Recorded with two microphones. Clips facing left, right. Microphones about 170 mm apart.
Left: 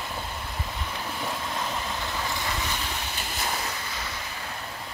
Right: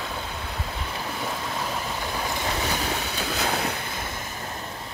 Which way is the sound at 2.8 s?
70° right (ahead or behind).